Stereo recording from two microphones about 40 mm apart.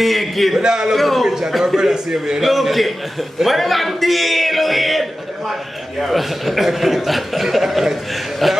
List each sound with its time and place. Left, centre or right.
0.0 s a man's voice: centre
0.6 s a man's voice: centre
0.9 s a man's voice: centre
1.2 s a man's voice: centre
2.5 s a man's voice: centre